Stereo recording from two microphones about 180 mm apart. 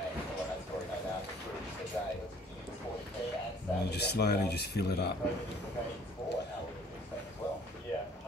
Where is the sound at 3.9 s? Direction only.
65° left (ahead or behind).